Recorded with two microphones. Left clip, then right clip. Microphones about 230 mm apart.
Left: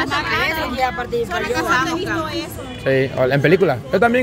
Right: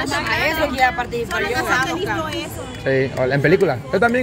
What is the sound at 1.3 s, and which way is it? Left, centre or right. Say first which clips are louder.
Speech: even; centre.